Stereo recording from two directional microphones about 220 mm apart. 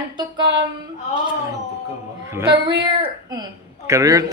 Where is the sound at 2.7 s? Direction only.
20° right (ahead or behind).